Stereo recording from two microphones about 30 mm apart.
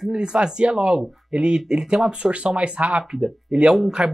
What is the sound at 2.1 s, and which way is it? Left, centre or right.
Speech, right.